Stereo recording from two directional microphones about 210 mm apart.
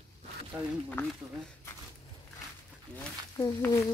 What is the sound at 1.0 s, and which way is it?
Speech, 10° left (ahead or behind).